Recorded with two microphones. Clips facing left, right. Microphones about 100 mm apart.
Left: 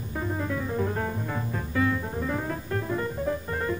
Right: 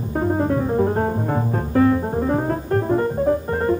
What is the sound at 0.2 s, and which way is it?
Music, 45° right (ahead or behind).